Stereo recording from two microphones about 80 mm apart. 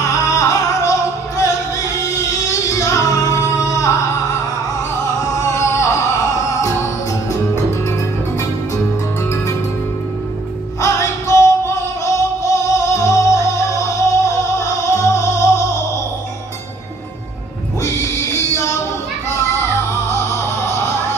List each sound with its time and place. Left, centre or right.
0.0 s music: left
2.5 s music: left
5.0 s music: left
10.8 s music: left
17.8 s music: left